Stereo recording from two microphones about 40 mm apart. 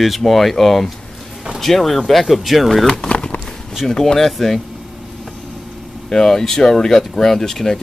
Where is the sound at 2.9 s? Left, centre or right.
Left.